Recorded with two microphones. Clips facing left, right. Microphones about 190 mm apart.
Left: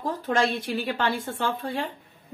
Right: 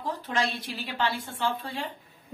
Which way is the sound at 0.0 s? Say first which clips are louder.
Left 5 dB; 50° left (ahead or behind).